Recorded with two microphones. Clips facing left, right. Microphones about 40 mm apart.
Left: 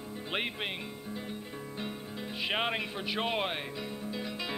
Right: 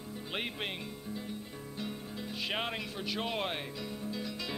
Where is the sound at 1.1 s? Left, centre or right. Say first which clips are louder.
Left 2 dB; left.